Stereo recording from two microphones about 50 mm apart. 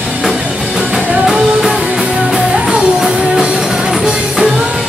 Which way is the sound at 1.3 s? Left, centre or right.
Centre.